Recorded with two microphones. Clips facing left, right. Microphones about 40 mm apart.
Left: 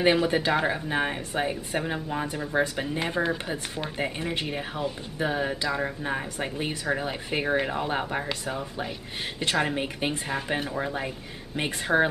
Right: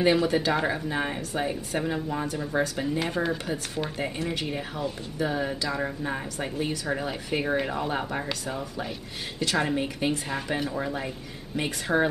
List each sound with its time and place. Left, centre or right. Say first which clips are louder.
0.0 s speech: even; left
9.4 s speech: even; left
10.5 s speech: right 1 dB; centre